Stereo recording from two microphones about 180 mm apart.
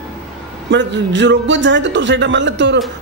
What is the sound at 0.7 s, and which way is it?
A man's voice, 80° right.